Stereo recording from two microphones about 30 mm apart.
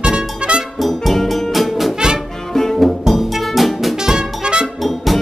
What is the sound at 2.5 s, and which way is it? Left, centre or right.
Music, centre.